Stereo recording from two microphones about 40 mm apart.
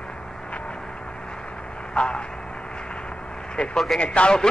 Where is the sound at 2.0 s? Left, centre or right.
Left.